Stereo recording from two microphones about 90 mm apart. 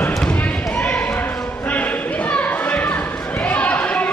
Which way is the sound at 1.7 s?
15° left (ahead or behind).